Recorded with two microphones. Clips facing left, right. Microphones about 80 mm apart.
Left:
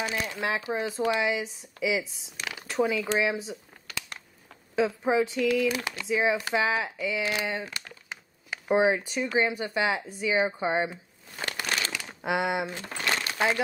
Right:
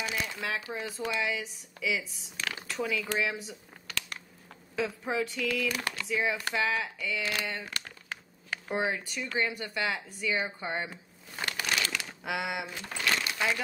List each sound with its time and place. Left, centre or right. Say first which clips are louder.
0.0 s speech: left 4 dB; left
2.7 s a sound: left 7 dB; left
4.7 s speech: left 7 dB; left
12.2 s speech: left 8 dB; left
13.3 s crumpling: left 4 dB; left